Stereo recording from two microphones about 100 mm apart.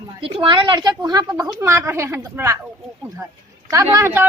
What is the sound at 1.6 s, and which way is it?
Speech, 25° right (ahead or behind).